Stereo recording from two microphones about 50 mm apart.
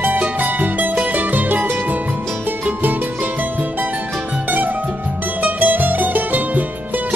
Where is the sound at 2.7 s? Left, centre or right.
Right.